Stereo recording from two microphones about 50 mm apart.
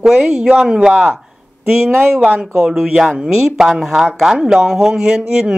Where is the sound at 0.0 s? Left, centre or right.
Centre.